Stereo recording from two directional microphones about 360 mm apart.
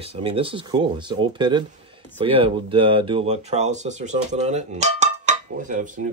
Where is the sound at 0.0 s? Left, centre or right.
Centre.